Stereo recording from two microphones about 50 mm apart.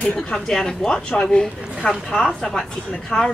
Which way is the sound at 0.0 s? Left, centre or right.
Centre.